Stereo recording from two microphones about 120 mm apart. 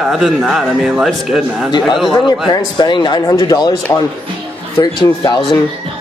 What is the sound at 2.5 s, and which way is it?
Speech, 40° left (ahead or behind).